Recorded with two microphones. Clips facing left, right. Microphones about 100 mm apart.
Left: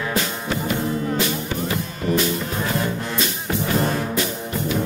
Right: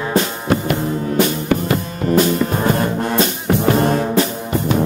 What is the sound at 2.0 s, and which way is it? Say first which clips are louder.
Music: right 7 dB; 45° right (ahead or behind).